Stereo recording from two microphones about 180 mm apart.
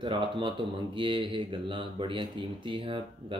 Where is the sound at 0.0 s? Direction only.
30° right (ahead or behind).